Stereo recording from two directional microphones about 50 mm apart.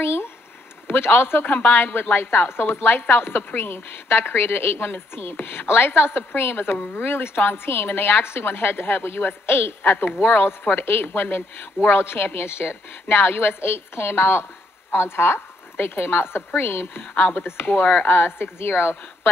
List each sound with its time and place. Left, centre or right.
0.0 s speech: left
0.8 s a woman's voice: left
10.8 s a woman's voice: left
13.1 s a woman's voice: left
17.1 s speech: left
18.0 s a woman's voice: left